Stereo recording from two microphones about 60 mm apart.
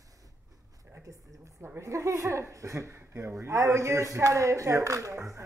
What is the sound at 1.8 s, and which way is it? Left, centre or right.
Speech, right.